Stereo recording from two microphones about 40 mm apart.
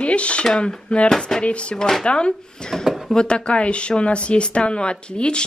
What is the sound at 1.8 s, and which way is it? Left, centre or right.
Speech, centre.